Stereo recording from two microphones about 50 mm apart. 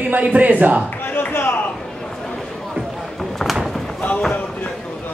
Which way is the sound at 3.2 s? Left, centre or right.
Centre.